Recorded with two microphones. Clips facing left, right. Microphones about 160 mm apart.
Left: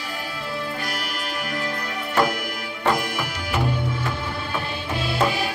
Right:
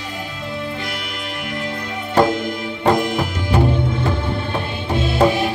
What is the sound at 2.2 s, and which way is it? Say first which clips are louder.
Music: right 7 dB; 25° right (ahead or behind).